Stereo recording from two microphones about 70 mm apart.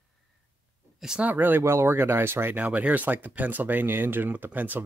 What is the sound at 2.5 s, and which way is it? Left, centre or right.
Speech, right.